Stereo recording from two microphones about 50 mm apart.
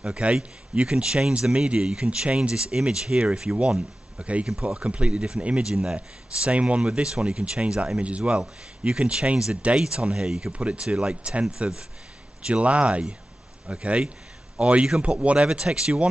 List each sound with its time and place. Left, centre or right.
0.0 s speech: right
10.2 s speech: centre
10.5 s speech: right